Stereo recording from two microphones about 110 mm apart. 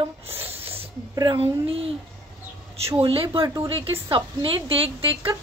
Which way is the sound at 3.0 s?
55° right (ahead or behind).